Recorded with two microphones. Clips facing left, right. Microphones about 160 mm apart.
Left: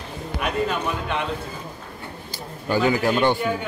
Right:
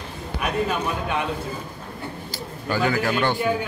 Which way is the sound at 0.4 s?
5° right (ahead or behind).